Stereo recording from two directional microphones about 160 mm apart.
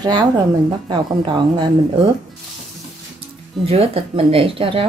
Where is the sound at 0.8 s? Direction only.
30° right (ahead or behind).